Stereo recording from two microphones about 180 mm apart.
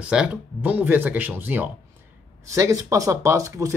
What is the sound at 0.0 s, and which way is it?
Speech, 5° right (ahead or behind).